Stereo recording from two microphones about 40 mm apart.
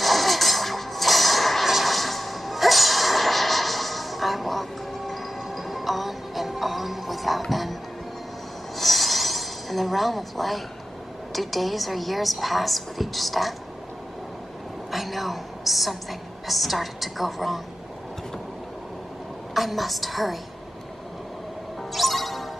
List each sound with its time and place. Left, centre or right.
0.0 s music: centre
8.7 s a sound: centre
11.3 s a woman's voice: centre
14.9 s a sound: centre
19.5 s a woman's voice: centre
21.9 s music: centre